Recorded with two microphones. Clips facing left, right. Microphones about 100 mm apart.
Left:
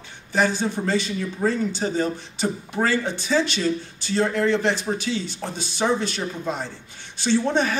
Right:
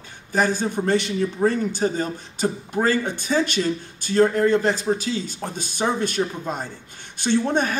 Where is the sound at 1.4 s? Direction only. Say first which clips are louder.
Right 2 dB; 30° right (ahead or behind).